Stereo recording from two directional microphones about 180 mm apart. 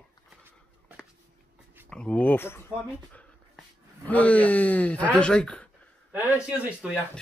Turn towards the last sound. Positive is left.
turn(degrees=-5)  # may be behind; listen again after turning